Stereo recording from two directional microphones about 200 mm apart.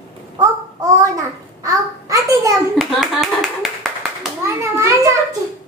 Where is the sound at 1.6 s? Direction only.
15° right (ahead or behind).